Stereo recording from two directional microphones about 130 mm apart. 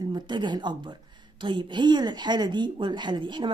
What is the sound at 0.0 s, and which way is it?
Speech, 35° right (ahead or behind).